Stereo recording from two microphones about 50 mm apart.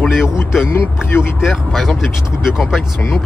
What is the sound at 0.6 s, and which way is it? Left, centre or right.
Speech, left.